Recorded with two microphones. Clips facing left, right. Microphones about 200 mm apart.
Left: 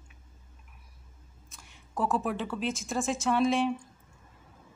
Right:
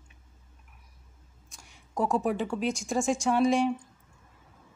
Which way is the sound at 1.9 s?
15° right (ahead or behind).